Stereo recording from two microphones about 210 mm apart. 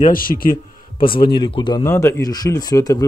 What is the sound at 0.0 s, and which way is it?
Speech, 45° left (ahead or behind).